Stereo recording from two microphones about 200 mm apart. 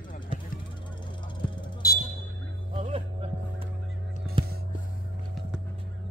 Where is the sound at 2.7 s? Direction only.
25° right (ahead or behind).